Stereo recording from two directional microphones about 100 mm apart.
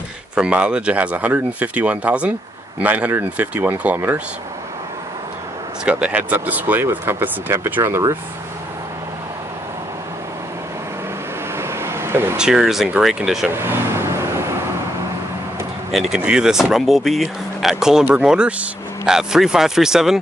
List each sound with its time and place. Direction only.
0.4 s speech: 10° right (ahead or behind)
5.9 s speech: 10° right (ahead or behind)
11.5 s vehicle: 25° right (ahead or behind)
12.4 s speech: 5° right (ahead or behind)
13.5 s vehicle: 25° right (ahead or behind)
15.9 s speech: centre (ahead or behind)